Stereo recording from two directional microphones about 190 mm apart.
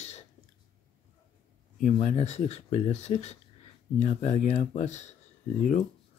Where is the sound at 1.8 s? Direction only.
40° left (ahead or behind).